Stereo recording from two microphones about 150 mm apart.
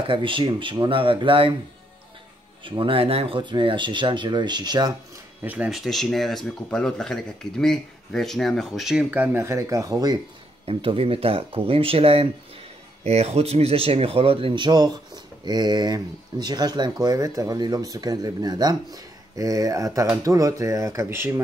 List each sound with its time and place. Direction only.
0.0 s speech: 35° right (ahead or behind)
2.6 s speech: 35° right (ahead or behind)
5.4 s speech: 10° right (ahead or behind); by 10.2 s 25° right (ahead or behind)
10.6 s speech: 40° right (ahead or behind); by 21.4 s 15° right (ahead or behind)